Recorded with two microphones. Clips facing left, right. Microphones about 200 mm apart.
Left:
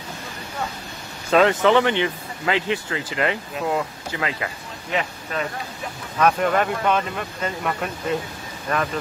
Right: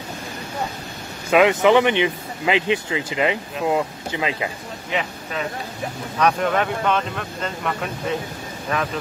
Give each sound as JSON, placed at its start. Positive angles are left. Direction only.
{"t": 1.3, "sound": "speech", "side_deg": -15}
{"t": 6.1, "sound": "speech", "side_deg": 0}